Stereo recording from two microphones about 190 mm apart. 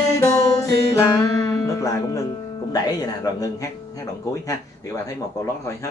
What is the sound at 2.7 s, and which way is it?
Speech, 20° left (ahead or behind).